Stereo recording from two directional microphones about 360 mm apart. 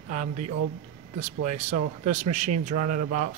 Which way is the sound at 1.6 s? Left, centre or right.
Centre.